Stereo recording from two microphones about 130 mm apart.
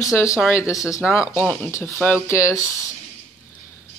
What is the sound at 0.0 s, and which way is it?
Speech, 25° left (ahead or behind).